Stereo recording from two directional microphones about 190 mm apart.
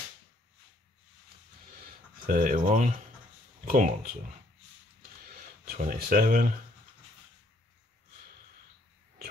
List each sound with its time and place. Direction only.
2.2 s speech: 45° right (ahead or behind)
5.8 s speech: 50° right (ahead or behind)